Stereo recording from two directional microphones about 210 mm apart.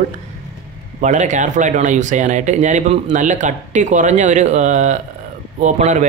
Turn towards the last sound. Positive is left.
turn(degrees=-35)  # may be behind; listen again after turning